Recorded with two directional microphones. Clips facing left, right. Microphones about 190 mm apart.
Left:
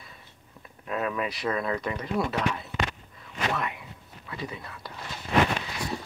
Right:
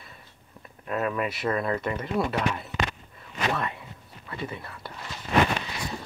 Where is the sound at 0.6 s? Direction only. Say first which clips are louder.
Right 2 dB; centre (ahead or behind).